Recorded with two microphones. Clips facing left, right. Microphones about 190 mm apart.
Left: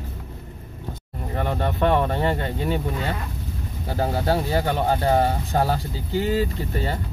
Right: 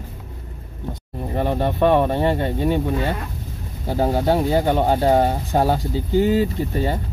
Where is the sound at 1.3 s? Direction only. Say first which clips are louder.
Right 4 dB; 20° right (ahead or behind).